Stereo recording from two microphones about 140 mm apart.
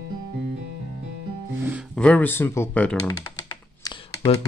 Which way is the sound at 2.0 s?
10° left (ahead or behind).